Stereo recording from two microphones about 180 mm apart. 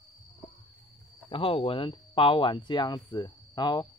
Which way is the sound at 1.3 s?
30° left (ahead or behind).